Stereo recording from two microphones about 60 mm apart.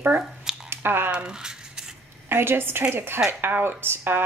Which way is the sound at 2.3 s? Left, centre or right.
Right.